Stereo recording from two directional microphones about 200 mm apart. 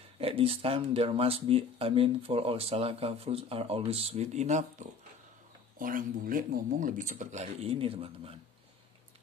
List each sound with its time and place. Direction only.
0.2 s speech: 30° right (ahead or behind)